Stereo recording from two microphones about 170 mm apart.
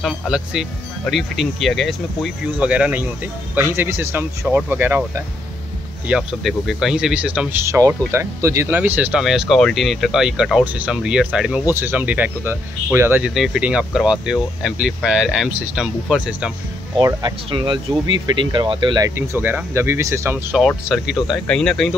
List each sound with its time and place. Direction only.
0.0 s speech: centre (ahead or behind)
13.3 s speech: centre (ahead or behind)
17.0 s speech: 25° right (ahead or behind)
20.5 s speech: centre (ahead or behind)